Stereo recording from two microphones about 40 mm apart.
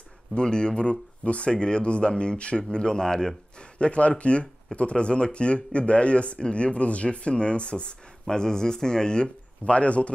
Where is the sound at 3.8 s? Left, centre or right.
Left.